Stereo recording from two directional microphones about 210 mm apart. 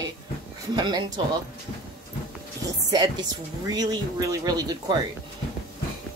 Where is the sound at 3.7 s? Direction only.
20° right (ahead or behind).